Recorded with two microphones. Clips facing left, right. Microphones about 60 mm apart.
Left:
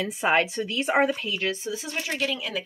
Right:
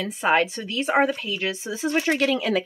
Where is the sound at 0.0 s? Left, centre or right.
Centre.